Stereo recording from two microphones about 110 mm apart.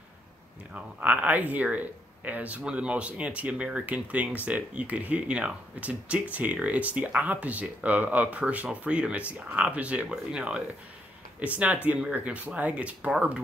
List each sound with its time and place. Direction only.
0.7 s speech: 15° right (ahead or behind)